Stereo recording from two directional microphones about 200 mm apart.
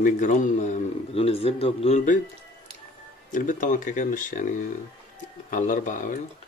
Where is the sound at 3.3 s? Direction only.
40° left (ahead or behind).